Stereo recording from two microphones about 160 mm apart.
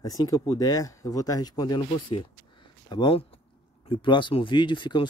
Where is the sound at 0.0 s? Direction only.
25° left (ahead or behind).